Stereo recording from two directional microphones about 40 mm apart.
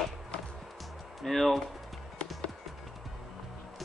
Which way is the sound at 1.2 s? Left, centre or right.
Centre.